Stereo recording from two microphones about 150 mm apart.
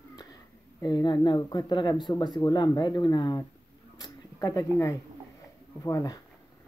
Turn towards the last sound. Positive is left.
turn(degrees=20)  # may be behind; listen again after turning